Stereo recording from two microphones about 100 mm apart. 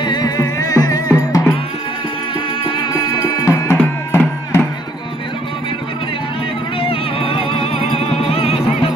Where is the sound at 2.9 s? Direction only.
40° left (ahead or behind).